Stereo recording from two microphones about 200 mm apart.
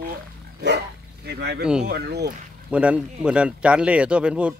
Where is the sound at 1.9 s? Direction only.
55° right (ahead or behind).